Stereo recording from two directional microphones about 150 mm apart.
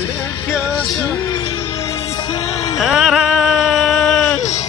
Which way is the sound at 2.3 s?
40° left (ahead or behind).